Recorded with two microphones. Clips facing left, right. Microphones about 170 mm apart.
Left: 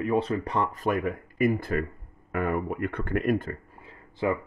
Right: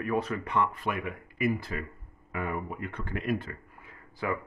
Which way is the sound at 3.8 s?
25° left (ahead or behind).